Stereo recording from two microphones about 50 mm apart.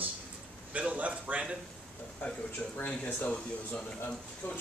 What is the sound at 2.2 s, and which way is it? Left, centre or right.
Speech, left.